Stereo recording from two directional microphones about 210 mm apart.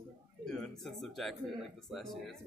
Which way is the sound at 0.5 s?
5° left (ahead or behind).